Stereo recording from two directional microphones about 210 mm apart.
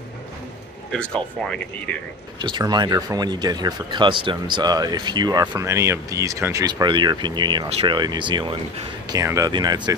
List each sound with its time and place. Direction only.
0.9 s speech: 5° left (ahead or behind)
2.4 s speech: 20° right (ahead or behind)